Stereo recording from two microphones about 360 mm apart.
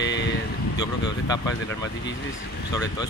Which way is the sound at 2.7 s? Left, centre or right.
Centre.